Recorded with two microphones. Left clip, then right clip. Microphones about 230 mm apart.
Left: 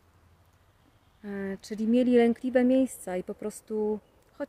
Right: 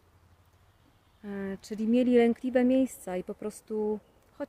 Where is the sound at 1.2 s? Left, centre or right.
Centre.